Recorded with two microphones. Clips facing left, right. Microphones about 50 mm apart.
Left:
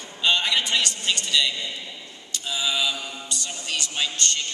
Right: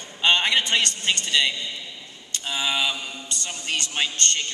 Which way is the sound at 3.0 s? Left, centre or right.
Centre.